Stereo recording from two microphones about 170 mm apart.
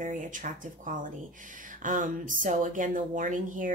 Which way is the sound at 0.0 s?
50° right (ahead or behind).